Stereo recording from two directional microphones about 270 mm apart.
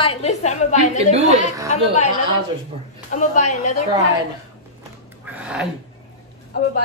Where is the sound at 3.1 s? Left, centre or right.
Left.